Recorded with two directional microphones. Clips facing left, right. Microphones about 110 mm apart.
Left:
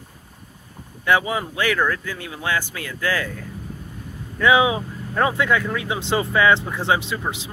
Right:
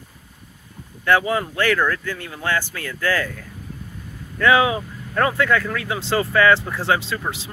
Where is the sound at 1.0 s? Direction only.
15° left (ahead or behind).